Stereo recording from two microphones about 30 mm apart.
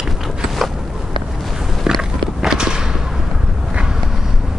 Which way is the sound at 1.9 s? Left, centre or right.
Right.